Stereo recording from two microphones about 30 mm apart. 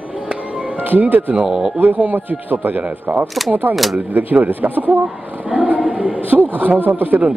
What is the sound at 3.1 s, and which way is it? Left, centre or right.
Speech, right.